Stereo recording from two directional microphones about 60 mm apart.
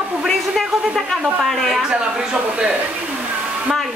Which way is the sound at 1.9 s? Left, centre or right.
Centre.